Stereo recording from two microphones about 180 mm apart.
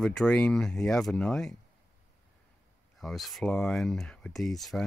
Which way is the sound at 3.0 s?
Centre (ahead or behind).